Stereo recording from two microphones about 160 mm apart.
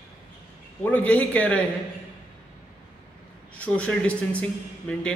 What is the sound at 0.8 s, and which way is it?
Speech, 10° left (ahead or behind).